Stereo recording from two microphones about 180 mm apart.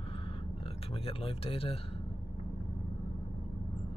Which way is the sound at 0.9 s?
30° left (ahead or behind).